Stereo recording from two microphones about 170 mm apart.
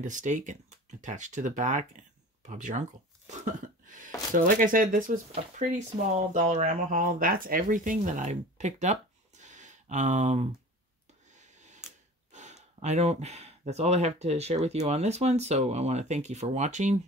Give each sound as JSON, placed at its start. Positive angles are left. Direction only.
{"t": 0.0, "sound": "speech", "side_deg": -45}
{"t": 9.4, "sound": "a sound", "side_deg": -45}
{"t": 12.8, "sound": "speech", "side_deg": -40}